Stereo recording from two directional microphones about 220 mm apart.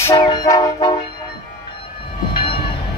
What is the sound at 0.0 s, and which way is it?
Vehicle, 15° left (ahead or behind).